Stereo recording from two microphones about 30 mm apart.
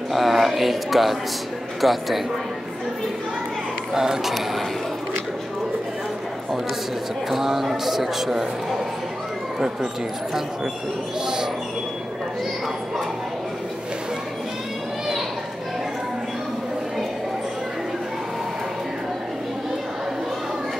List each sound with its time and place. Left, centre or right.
0.1 s speech: centre
3.9 s a man's voice: centre
7.2 s a man's voice: centre